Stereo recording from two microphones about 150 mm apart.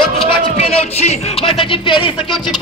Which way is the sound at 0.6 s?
45° left (ahead or behind).